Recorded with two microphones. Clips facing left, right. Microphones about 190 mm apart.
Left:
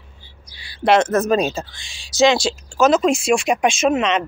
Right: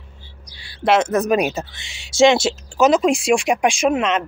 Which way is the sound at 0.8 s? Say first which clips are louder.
Left 1 dB; 10° right (ahead or behind).